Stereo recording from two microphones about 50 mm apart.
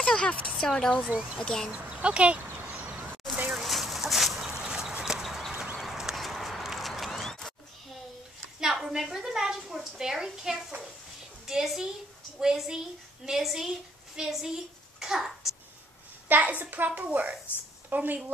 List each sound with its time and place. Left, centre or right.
0.2 s a woman's voice: centre
1.1 s speech: centre
1.4 s speech: centre
1.7 s speech: right
2.6 s a sound: right
3.5 s chicken: centre
4.6 s horse: centre
5.2 s clip-clop: centre
6.2 s a sound: centre
8.5 s a sound: centre
12.4 s a woman's voice: centre
14.3 s a sound: centre
16.3 s a child's voice: right